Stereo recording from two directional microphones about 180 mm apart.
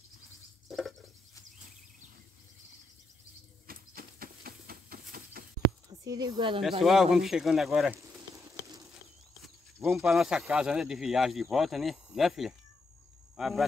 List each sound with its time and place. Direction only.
0.7 s a sound: centre (ahead or behind)
3.6 s a sound: 55° right (ahead or behind)
6.0 s speech: 20° right (ahead or behind)
6.8 s speech: centre (ahead or behind)
8.0 s frying: 20° right (ahead or behind)
9.8 s speech: centre (ahead or behind)